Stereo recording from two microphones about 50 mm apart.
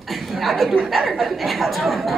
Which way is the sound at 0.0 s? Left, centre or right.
Centre.